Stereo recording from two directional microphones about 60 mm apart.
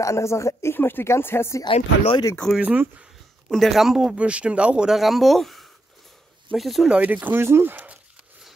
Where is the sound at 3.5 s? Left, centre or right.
Centre.